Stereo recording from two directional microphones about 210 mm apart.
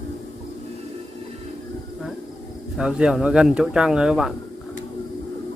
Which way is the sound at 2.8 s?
5° right (ahead or behind).